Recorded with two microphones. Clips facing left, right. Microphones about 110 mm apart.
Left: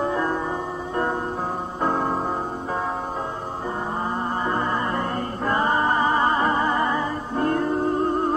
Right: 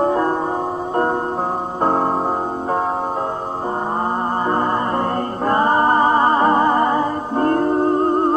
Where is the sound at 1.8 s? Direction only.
45° right (ahead or behind).